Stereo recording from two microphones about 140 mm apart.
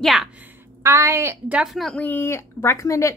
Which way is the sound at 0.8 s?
20° right (ahead or behind).